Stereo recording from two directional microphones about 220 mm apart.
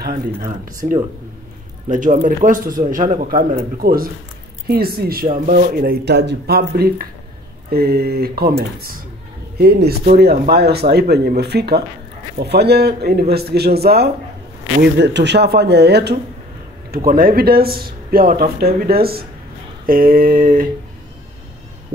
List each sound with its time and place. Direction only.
0.0 s a man's voice: 40° right (ahead or behind)